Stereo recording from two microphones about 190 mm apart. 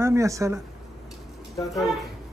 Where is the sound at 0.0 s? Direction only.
15° right (ahead or behind).